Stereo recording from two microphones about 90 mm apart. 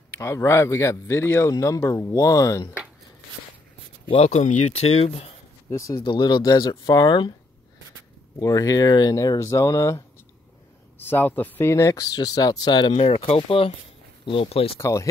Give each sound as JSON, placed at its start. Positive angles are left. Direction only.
{"t": 0.2, "sound": "speech", "side_deg": 30}
{"t": 5.0, "sound": "speech", "side_deg": 90}
{"t": 5.7, "sound": "speech", "side_deg": 40}
{"t": 5.9, "sound": "speech", "side_deg": 60}
{"t": 8.4, "sound": "speech", "side_deg": 40}
{"t": 9.1, "sound": "speech", "side_deg": 35}
{"t": 11.0, "sound": "speech", "side_deg": 20}
{"t": 11.7, "sound": "speech", "side_deg": 35}
{"t": 14.8, "sound": "speech", "side_deg": 35}